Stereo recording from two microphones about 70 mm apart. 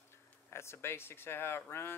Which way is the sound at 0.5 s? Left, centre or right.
Left.